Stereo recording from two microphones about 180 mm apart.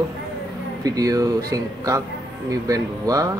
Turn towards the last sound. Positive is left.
turn(degrees=-20)  # may be behind; listen again after turning